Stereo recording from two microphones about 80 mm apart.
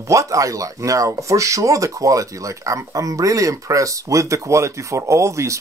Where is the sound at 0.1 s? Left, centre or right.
Right.